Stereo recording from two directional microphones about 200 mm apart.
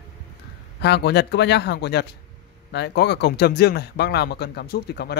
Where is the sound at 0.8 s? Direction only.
55° left (ahead or behind).